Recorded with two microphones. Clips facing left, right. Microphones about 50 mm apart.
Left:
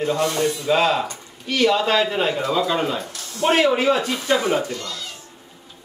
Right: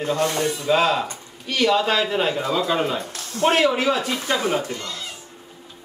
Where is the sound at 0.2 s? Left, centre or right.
Right.